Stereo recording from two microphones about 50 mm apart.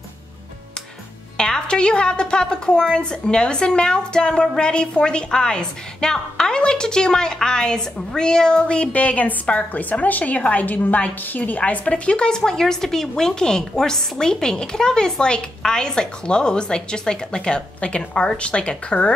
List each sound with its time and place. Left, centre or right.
1.4 s a woman's voice: centre